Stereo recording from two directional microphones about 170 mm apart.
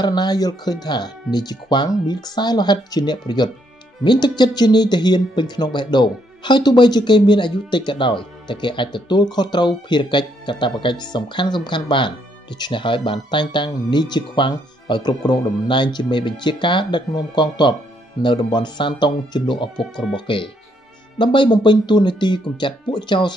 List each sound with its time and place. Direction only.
0.0 s speech: 25° left (ahead or behind)